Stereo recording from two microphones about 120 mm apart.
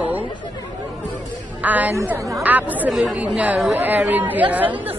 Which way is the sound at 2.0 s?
25° right (ahead or behind).